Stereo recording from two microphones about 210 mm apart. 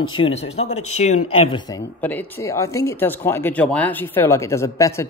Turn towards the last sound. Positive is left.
turn(degrees=15)  # may be behind; listen again after turning